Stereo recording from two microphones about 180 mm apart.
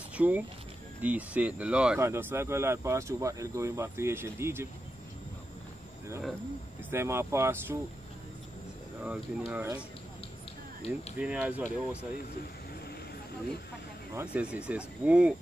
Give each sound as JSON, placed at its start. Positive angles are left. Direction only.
{"t": 0.1, "sound": "a sound", "side_deg": -10}
{"t": 1.0, "sound": "speech", "side_deg": -10}
{"t": 6.9, "sound": "speech", "side_deg": -15}
{"t": 9.0, "sound": "speech", "side_deg": -5}
{"t": 11.1, "sound": "speech", "side_deg": -10}
{"t": 14.1, "sound": "speech", "side_deg": -5}